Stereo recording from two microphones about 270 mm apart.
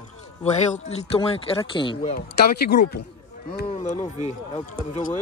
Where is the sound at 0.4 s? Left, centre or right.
Left.